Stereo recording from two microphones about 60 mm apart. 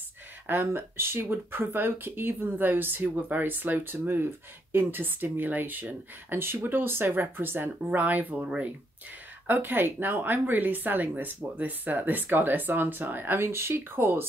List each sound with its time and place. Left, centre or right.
0.7 s speech: right; by 8.7 s centre
9.5 s speech: right